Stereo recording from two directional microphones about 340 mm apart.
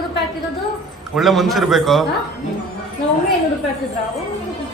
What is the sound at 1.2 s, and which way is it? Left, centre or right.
Speech, centre.